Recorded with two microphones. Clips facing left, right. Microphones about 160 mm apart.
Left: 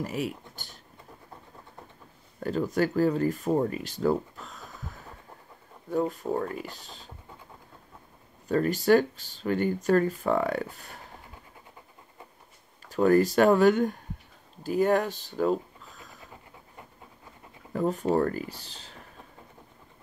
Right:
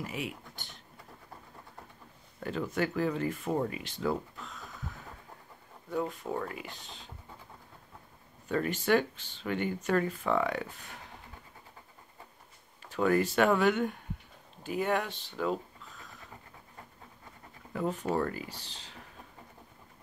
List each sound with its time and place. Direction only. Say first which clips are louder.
0.0 s speech: left 6 dB; 40° left (ahead or behind)
2.4 s speech: left 6 dB; 40° left (ahead or behind)
5.9 s speech: left 6 dB; 40° left (ahead or behind)
8.5 s speech: left 6 dB; 40° left (ahead or behind)
12.8 s speech: left 6 dB; 40° left (ahead or behind)
17.7 s speech: left 6 dB; 40° left (ahead or behind)